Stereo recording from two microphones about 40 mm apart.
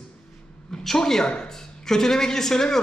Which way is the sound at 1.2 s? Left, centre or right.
Left.